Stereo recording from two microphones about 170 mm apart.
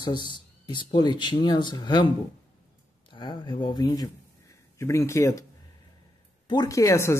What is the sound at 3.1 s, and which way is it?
Speech, 25° left (ahead or behind).